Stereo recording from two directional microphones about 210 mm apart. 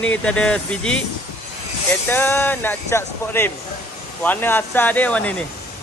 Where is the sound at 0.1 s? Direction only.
5° left (ahead or behind).